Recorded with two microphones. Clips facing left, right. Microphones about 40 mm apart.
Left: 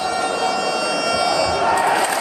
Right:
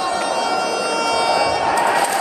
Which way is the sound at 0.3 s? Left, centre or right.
Centre.